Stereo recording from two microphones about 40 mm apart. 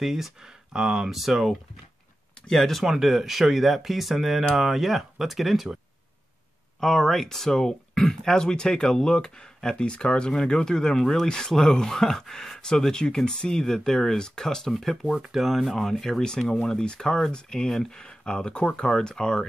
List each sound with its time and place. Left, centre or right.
0.0 s speech: centre
2.5 s speech: centre
2.8 s speech: centre
6.8 s speech: centre
14.7 s speech: centre; by 18.9 s left
18.9 s speech: centre